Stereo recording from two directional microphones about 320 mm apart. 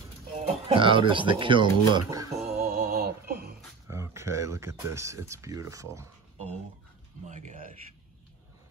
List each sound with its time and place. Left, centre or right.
0.7 s speech: centre
2.8 s mantra: right
3.8 s speech: centre
7.2 s speech: right